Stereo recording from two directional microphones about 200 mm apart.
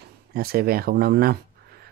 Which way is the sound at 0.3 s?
50° right (ahead or behind).